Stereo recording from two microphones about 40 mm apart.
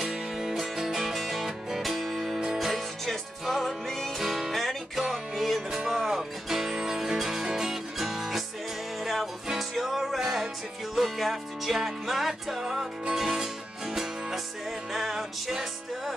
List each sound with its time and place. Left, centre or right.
0.5 s music: centre
4.2 s music: centre